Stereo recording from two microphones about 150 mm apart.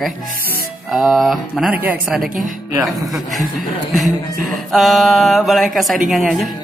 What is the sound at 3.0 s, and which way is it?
Speech, centre (ahead or behind).